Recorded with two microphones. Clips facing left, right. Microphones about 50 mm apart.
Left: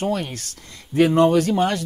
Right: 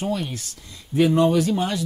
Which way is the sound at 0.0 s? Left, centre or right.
Left.